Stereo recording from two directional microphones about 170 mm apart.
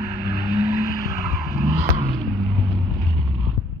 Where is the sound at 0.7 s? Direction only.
60° left (ahead or behind).